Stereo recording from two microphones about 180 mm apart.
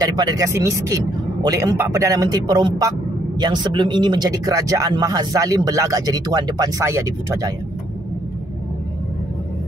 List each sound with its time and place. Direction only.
0.0 s speech: 20° right (ahead or behind)